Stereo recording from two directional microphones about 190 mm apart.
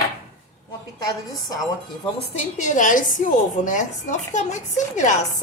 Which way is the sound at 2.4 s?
40° left (ahead or behind).